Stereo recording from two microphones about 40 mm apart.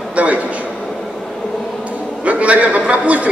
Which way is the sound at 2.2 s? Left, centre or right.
Right.